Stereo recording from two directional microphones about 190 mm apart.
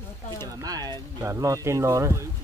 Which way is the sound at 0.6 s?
20° right (ahead or behind).